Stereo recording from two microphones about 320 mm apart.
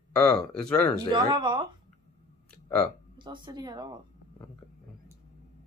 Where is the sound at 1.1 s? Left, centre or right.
Centre.